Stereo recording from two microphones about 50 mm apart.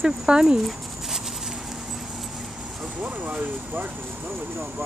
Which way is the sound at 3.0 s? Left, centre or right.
Right.